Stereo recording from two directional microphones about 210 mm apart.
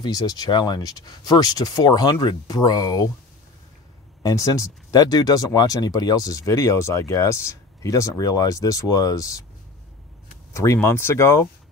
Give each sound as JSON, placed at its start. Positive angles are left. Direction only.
{"t": 0.0, "sound": "speech", "side_deg": 20}
{"t": 4.2, "sound": "speech", "side_deg": 15}
{"t": 10.5, "sound": "speech", "side_deg": 15}